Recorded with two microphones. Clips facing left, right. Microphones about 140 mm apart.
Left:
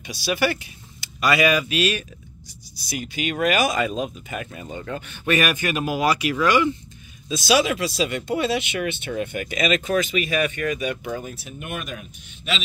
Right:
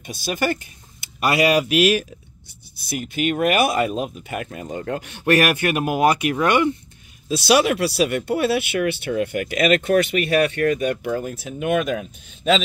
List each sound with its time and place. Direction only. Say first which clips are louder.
0.0 s speech: left 1 dB; 50° right (ahead or behind)
1.2 s speech: right 2 dB; 70° right (ahead or behind)
2.7 s speech: right 3 dB; 55° right (ahead or behind)
7.2 s speech: right 3 dB; 65° right (ahead or behind); by 11.8 s 90° right